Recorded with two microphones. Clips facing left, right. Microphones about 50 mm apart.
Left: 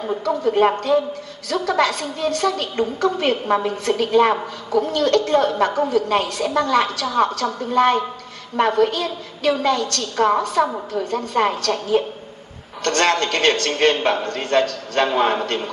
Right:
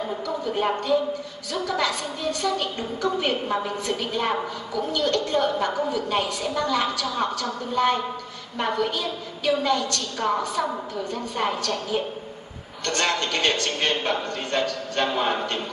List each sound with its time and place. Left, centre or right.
0.2 s a woman's voice: left
12.8 s a woman's voice: left